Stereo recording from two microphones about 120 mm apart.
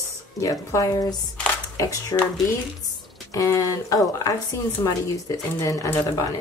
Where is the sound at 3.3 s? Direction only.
25° left (ahead or behind).